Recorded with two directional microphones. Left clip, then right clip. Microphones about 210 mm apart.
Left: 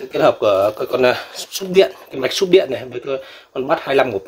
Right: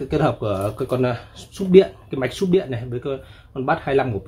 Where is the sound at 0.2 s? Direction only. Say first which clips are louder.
Left 12 dB; 45° left (ahead or behind).